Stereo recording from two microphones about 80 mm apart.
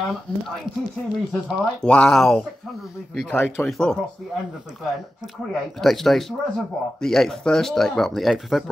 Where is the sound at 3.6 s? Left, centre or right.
Centre.